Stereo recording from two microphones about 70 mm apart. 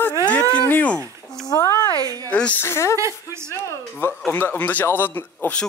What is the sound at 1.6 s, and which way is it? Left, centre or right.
Speech, left.